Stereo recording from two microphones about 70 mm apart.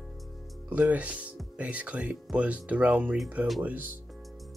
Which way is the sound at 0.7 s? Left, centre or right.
Right.